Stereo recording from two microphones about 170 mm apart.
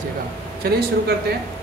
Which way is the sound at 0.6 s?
65° right (ahead or behind).